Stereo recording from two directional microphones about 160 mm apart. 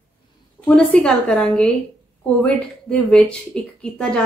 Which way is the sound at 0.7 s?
5° left (ahead or behind).